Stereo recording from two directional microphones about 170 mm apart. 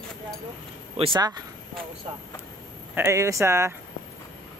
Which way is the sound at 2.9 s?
15° right (ahead or behind).